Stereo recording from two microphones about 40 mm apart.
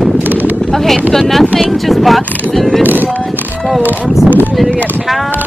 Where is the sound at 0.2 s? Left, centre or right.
Right.